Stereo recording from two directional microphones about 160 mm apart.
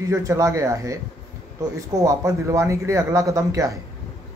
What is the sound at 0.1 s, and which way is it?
Speech, 20° right (ahead or behind).